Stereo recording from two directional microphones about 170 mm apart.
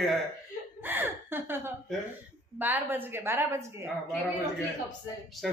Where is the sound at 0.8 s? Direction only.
10° right (ahead or behind).